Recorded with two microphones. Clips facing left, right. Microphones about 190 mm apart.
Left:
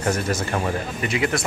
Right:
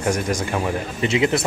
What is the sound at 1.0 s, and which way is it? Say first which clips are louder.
Speech: right 5 dB; 25° right (ahead or behind).